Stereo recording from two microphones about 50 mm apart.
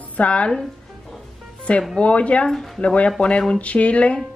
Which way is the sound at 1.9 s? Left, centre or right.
Left.